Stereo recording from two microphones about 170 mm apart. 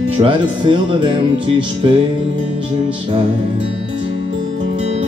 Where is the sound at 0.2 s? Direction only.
30° right (ahead or behind).